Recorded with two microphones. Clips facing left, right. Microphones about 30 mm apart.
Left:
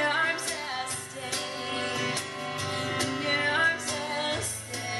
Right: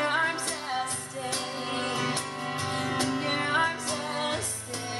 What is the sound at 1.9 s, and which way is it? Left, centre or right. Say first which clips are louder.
Music: right 1 dB; right.